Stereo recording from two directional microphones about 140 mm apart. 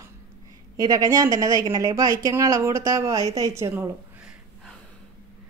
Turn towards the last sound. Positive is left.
turn(degrees=0)  # may be behind; listen again after turning